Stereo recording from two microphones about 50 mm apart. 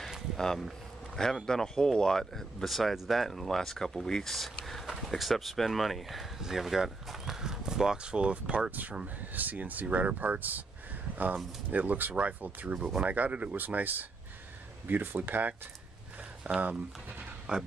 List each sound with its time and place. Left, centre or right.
0.4 s speech: centre; by 10.6 s right
11.7 s speech: right
17.5 s speech: centre